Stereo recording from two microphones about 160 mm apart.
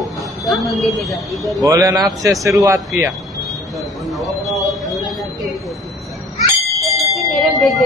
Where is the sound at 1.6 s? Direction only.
20° right (ahead or behind).